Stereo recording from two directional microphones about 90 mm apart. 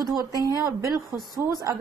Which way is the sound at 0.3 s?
40° right (ahead or behind).